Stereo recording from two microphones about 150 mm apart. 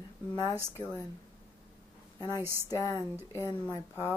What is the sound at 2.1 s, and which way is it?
A woman's voice, 25° left (ahead or behind).